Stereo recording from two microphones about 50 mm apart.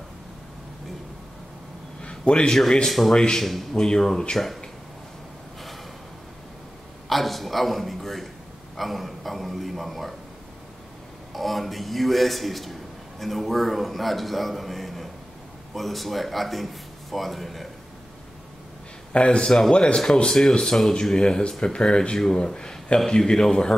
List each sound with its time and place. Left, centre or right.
2.0 s a sound: centre
2.6 s a man's voice: centre
7.1 s a sound: centre
11.3 s a man's voice: centre
19.1 s a man's voice: left
19.4 s speech: centre
19.7 s a man's voice: centre